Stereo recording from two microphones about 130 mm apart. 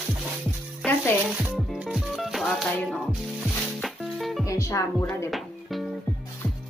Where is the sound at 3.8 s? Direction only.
Centre (ahead or behind).